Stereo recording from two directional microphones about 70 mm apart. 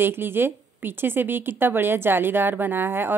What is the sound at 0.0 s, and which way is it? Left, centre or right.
A woman's voice, right.